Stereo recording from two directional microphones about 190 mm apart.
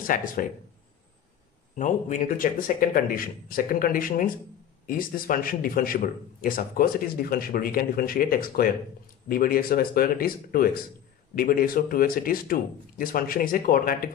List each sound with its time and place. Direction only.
0.0 s a man's voice: 50° left (ahead or behind)
1.8 s a man's voice: 40° left (ahead or behind)